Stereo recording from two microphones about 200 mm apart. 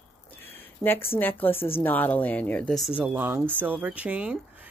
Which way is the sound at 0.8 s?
10° left (ahead or behind).